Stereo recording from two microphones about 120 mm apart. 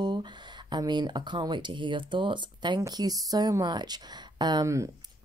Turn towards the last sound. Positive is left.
turn(degrees=-30)  # may be behind; listen again after turning